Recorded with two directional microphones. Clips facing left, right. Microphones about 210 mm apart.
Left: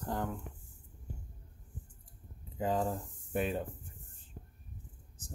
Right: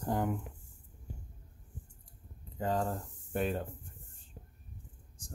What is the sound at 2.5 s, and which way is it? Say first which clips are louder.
Speech: left 1 dB; 5° left (ahead or behind).